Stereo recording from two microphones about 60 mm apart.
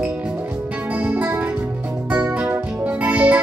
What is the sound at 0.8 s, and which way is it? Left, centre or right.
Music, right.